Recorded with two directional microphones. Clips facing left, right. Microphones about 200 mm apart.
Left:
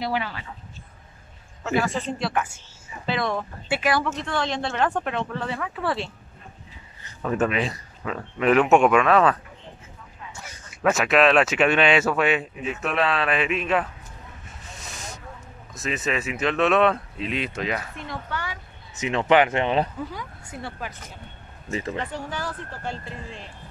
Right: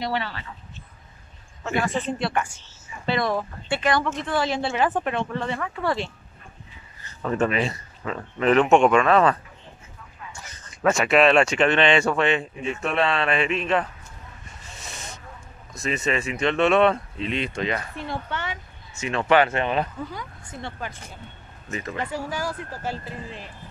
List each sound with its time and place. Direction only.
0.0 s speech: 10° left (ahead or behind)
1.6 s speech: centre (ahead or behind)
7.2 s speech: 5° left (ahead or behind)
10.7 s speech: 5° left (ahead or behind)
14.6 s snake: centre (ahead or behind)
15.7 s speech: centre (ahead or behind)
17.9 s speech: 30° right (ahead or behind)
18.9 s speech: 20° left (ahead or behind)
20.1 s speech: 5° left (ahead or behind)
22.0 s speech: 10° right (ahead or behind)